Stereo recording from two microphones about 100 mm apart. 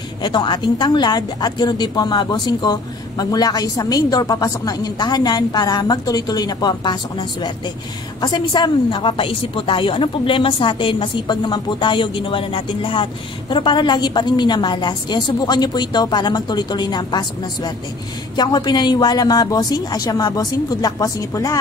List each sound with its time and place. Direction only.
0.2 s a woman's voice: 50° left (ahead or behind); by 21.5 s 35° left (ahead or behind)